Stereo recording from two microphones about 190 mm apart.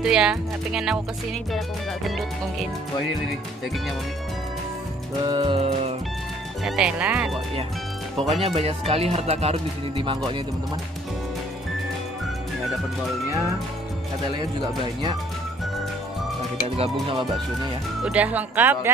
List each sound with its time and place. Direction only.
0.0 s speech: 5° right (ahead or behind)
2.0 s speech: centre (ahead or behind)
5.2 s music: 25° right (ahead or behind)
6.6 s speech: 5° right (ahead or behind)
8.4 s speech: 30° right (ahead or behind)
14.8 s music: 25° right (ahead or behind)
16.6 s speech: 30° right (ahead or behind)
17.1 s music: 30° right (ahead or behind)
18.0 s speech: 5° right (ahead or behind)